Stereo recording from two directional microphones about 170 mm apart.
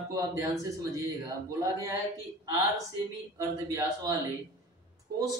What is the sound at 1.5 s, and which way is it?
Speech, 20° right (ahead or behind).